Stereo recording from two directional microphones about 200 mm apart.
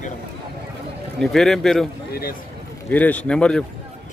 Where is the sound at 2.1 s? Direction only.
50° left (ahead or behind).